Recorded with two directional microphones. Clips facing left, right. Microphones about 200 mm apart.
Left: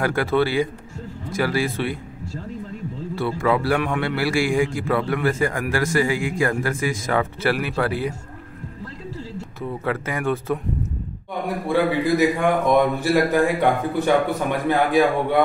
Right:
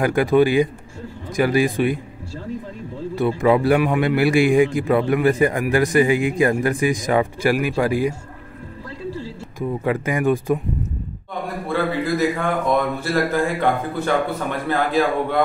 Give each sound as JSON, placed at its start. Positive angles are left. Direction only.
{"t": 0.0, "sound": "a man's voice", "side_deg": -15}
{"t": 3.2, "sound": "a man's voice", "side_deg": -20}
{"t": 9.6, "sound": "a man's voice", "side_deg": -15}
{"t": 11.7, "sound": "speech", "side_deg": 15}